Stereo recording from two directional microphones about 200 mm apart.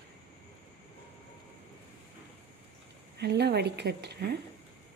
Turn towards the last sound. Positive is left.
turn(degrees=-55)  # may be behind; listen again after turning